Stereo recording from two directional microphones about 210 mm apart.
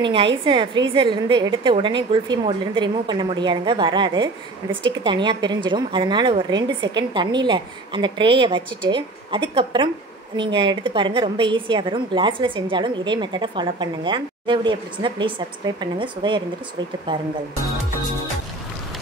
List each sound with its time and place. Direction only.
0.0 s a woman's voice: 25° right (ahead or behind)